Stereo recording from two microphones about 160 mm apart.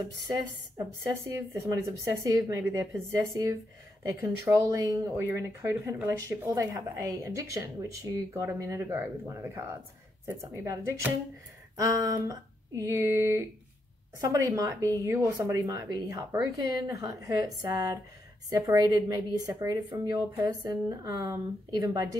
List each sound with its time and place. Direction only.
0.0 s a woman's voice: 25° right (ahead or behind)